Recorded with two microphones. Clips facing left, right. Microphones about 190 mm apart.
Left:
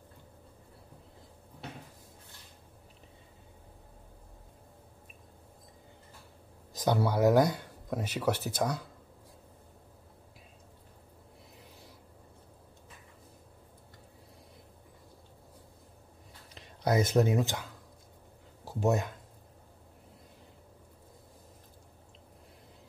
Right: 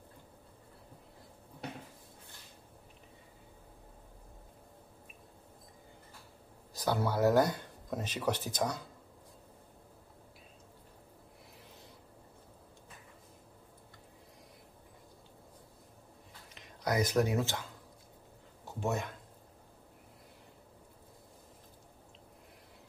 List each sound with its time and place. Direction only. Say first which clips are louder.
6.7 s speech: left 4 dB; 20° left (ahead or behind)
16.5 s speech: left 4 dB; 25° left (ahead or behind)
18.7 s speech: left 6 dB; 40° left (ahead or behind)